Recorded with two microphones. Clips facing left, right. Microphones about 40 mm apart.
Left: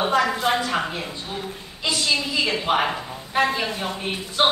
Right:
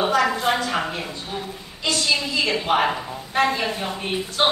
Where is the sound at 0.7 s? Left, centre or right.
Centre.